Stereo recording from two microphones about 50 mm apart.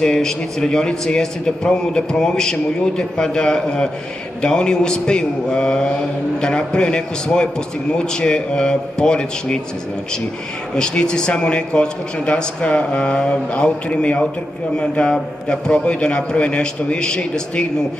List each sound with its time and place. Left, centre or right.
0.0 s a man's voice: centre
10.7 s a man's voice: centre